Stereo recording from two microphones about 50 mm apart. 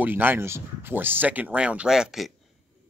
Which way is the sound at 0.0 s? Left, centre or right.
Right.